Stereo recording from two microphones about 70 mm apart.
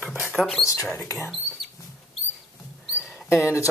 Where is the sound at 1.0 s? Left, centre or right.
Left.